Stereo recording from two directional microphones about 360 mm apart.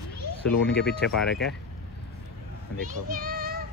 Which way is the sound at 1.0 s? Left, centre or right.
Centre.